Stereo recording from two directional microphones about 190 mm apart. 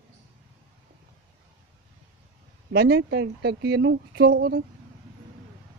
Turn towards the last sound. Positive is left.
turn(degrees=-55)  # may be behind; listen again after turning